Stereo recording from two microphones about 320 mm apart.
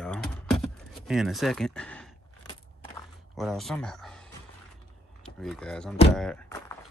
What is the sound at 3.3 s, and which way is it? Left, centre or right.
Speech, centre.